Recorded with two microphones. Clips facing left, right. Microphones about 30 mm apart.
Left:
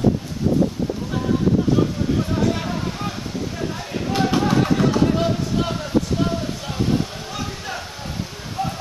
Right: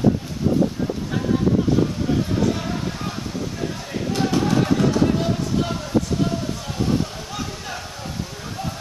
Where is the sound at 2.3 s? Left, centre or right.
Centre.